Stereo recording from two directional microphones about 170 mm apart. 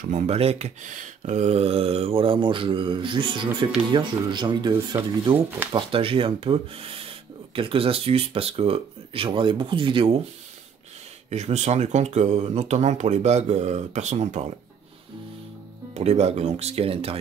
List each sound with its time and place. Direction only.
0.0 s speech: 40° right (ahead or behind)
11.2 s speech: 40° right (ahead or behind)
15.9 s speech: 40° right (ahead or behind)